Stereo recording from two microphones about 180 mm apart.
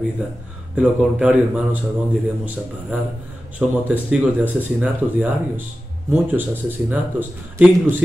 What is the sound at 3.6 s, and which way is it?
Speech, 5° right (ahead or behind).